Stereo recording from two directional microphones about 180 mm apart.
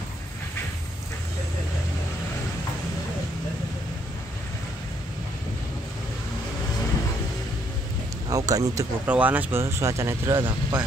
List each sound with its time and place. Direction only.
8.3 s speech: 20° right (ahead or behind)
9.0 s speech: 10° right (ahead or behind)